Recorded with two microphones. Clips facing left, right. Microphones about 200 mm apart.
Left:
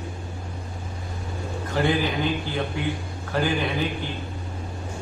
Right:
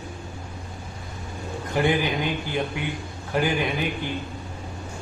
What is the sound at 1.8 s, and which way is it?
A man's voice, 15° right (ahead or behind).